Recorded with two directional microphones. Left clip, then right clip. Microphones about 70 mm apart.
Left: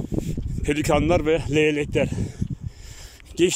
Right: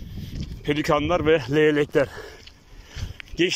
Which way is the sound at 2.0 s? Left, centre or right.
Left.